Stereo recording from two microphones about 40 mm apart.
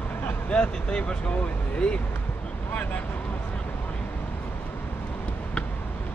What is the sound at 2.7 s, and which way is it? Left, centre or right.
Speech, left.